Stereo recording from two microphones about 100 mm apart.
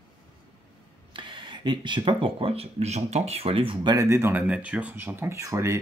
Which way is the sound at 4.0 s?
25° right (ahead or behind).